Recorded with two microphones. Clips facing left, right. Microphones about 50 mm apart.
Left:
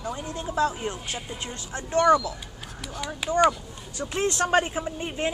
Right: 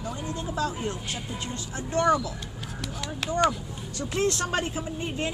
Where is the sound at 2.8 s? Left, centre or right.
Centre.